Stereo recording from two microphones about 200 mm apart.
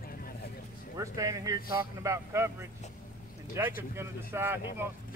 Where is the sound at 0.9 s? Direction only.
15° right (ahead or behind).